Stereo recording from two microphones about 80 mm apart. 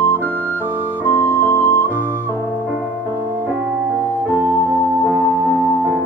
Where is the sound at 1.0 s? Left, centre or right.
Left.